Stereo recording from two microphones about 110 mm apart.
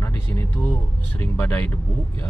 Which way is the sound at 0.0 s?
20° left (ahead or behind).